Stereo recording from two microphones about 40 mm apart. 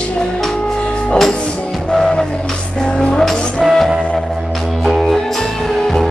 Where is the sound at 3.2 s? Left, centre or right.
Centre.